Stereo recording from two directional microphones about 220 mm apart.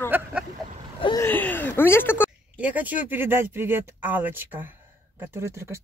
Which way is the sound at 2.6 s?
5° right (ahead or behind).